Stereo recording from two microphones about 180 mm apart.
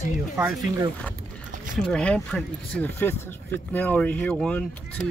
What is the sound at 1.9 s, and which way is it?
Speech, 5° left (ahead or behind).